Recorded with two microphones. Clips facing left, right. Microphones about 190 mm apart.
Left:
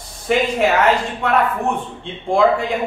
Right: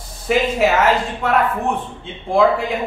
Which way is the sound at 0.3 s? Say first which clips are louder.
Even; centre (ahead or behind).